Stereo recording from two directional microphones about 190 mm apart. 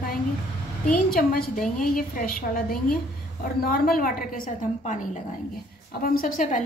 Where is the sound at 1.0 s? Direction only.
50° left (ahead or behind).